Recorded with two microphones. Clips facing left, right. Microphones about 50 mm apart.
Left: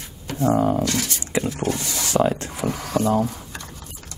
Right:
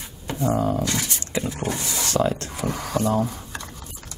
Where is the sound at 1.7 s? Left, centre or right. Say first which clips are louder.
Left 2 dB; right.